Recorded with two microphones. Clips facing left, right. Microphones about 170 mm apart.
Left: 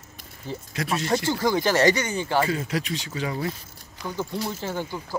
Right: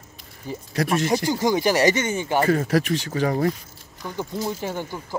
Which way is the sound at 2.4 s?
45° right (ahead or behind).